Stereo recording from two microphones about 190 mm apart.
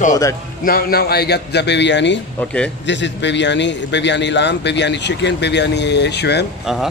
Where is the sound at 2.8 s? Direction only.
70° left (ahead or behind).